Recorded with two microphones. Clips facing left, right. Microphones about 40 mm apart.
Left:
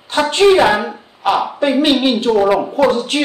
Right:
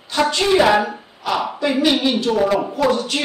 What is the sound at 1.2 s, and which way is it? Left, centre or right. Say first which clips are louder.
A man's voice: left 5 dB; left.